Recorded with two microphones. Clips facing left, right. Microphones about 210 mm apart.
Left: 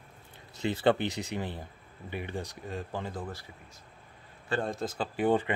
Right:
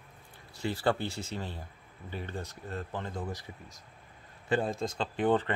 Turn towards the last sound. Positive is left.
turn(degrees=10)  # may be behind; listen again after turning